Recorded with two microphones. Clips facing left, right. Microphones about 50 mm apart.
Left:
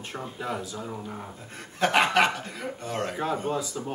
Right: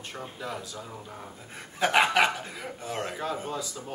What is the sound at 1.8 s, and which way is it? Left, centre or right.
Speech, centre.